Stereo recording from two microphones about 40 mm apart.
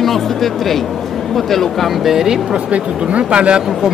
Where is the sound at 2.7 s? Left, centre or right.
Right.